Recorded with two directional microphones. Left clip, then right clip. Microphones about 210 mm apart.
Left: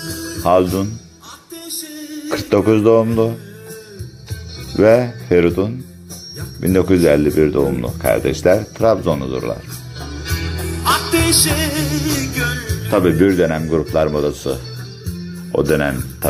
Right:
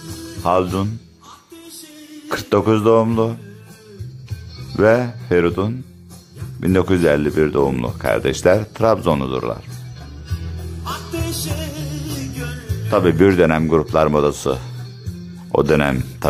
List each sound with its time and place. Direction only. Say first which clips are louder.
0.4 s speech: left 3 dB; centre (ahead or behind)
2.2 s speech: left 2 dB; centre (ahead or behind)
4.7 s speech: left 3 dB; centre (ahead or behind)
10.2 s music: left 13 dB; 20° left (ahead or behind)
12.9 s speech: even; 10° right (ahead or behind)